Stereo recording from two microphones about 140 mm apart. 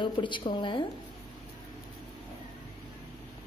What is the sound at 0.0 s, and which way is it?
Speech, 35° left (ahead or behind).